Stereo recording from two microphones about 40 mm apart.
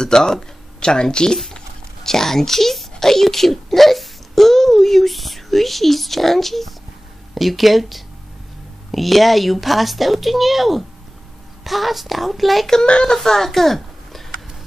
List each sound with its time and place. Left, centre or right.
0.0 s a child's voice: centre
13.0 s a woman's voice: centre